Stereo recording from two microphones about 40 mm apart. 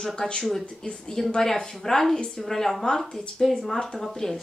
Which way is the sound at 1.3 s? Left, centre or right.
Centre.